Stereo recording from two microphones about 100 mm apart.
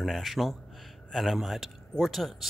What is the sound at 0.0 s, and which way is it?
Speech, centre (ahead or behind).